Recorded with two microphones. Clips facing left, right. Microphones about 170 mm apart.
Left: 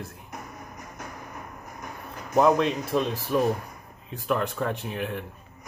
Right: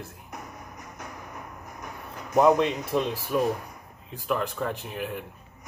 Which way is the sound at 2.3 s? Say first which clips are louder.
Even; 15° right (ahead or behind).